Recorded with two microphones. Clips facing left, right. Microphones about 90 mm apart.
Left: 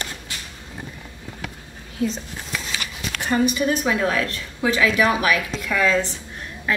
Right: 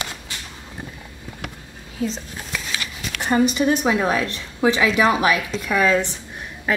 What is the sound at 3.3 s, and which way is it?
A woman's voice, 20° right (ahead or behind).